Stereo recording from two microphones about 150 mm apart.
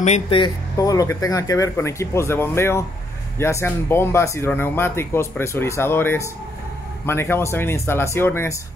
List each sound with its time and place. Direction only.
0.0 s speech: 50° left (ahead or behind)
0.4 s speech: 25° left (ahead or behind)